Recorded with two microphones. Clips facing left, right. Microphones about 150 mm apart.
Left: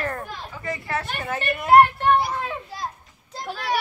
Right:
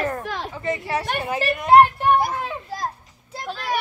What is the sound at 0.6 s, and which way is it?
Speech, 20° right (ahead or behind).